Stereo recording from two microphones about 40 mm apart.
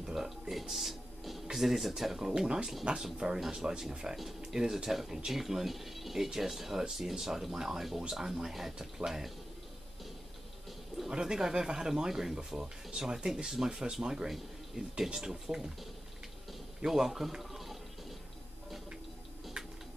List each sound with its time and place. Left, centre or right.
0.0 s music: centre
2.1 s speech: centre
11.1 s speech: centre
16.8 s speech: centre